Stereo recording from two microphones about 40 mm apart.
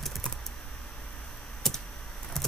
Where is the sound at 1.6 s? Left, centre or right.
Centre.